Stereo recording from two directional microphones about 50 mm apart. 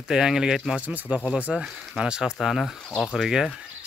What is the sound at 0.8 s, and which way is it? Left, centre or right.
Speech, right.